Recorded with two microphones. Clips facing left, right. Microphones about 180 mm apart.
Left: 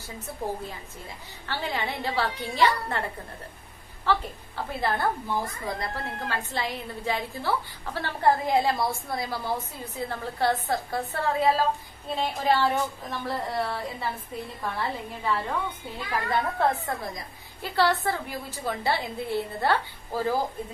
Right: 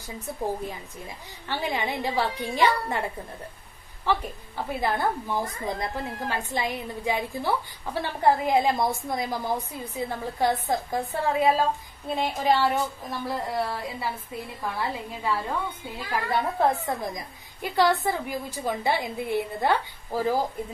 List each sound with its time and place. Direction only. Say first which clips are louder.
1.5 s a woman's voice: right 2 dB; 15° right (ahead or behind)